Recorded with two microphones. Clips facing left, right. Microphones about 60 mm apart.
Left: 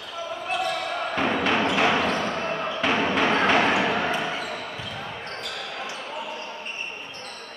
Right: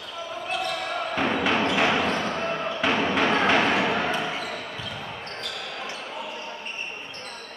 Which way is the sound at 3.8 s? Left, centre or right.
Centre.